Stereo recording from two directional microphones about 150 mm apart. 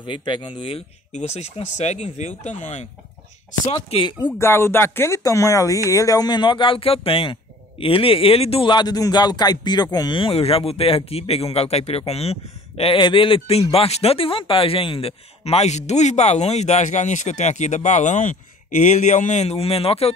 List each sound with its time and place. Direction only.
0.0 s speech: 30° left (ahead or behind); by 2.9 s 50° left (ahead or behind)
3.7 s speech: 35° left (ahead or behind)
4.3 s speech: 15° left (ahead or behind); by 20.1 s 40° left (ahead or behind)